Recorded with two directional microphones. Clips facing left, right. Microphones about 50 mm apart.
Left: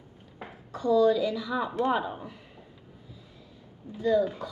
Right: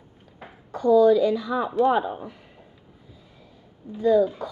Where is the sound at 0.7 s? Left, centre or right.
Right.